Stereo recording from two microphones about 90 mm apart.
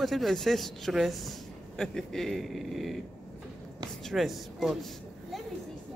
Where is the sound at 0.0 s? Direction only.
Centre (ahead or behind).